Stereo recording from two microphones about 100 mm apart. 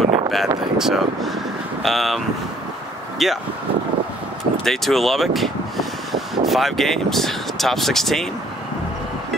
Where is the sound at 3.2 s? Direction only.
Centre (ahead or behind).